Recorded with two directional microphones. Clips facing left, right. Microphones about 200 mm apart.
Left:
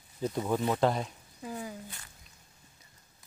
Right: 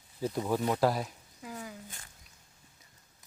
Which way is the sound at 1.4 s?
25° left (ahead or behind).